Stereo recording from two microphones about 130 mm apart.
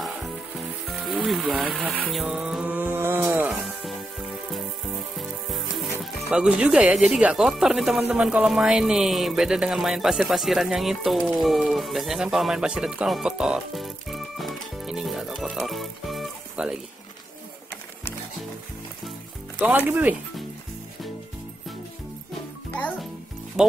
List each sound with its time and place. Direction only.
1.0 s music: centre (ahead or behind); by 3.5 s 15° right (ahead or behind)
5.1 s sizzle: centre (ahead or behind)
6.3 s speech: 5° right (ahead or behind)
19.6 s speech: 15° right (ahead or behind)
23.6 s speech: 5° right (ahead or behind)